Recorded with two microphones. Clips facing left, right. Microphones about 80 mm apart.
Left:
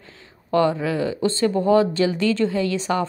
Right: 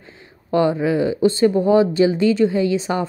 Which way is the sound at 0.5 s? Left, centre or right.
Centre.